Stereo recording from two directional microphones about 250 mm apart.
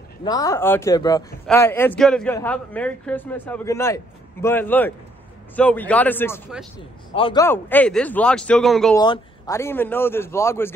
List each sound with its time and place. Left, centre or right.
0.2 s speech: centre
7.2 s a man's voice: left
7.4 s speech: centre
8.9 s speech: centre